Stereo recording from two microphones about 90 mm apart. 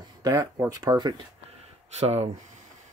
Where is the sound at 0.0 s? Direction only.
45° right (ahead or behind).